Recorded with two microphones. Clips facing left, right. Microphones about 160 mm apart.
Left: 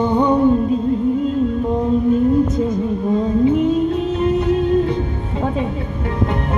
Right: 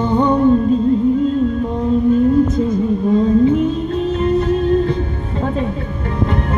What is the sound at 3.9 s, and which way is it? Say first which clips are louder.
Music: right 1 dB; 15° left (ahead or behind).